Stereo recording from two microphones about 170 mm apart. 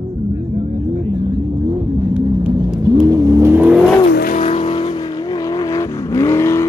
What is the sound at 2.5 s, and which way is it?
Vehicle, 25° right (ahead or behind).